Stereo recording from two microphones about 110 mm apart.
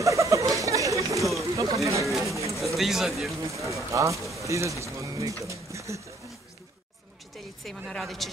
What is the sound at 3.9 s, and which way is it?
Speech, 30° right (ahead or behind).